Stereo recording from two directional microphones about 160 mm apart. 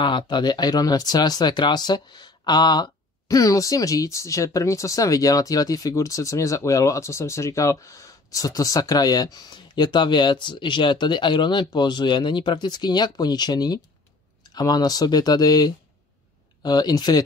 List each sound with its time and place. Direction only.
0.0 s speech: 30° left (ahead or behind)